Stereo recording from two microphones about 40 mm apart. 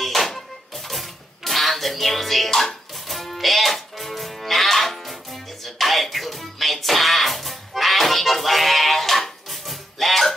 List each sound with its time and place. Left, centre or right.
0.0 s music: centre